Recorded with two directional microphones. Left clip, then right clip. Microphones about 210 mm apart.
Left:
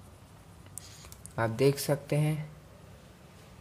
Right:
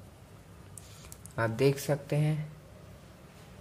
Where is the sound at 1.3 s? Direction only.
15° left (ahead or behind).